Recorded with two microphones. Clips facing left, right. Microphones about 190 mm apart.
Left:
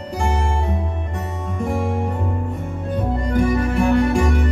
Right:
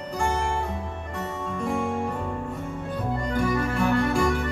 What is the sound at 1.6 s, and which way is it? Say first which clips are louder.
Music: left 4 dB; 20° left (ahead or behind).